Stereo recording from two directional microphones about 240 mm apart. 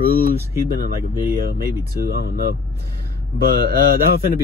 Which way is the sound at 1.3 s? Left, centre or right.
Right.